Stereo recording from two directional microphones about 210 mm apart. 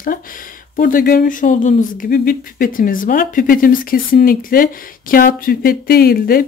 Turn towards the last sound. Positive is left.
turn(degrees=45)  # may be behind; listen again after turning